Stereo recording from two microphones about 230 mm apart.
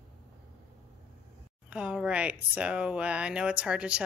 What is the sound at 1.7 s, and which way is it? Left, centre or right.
Speech, centre.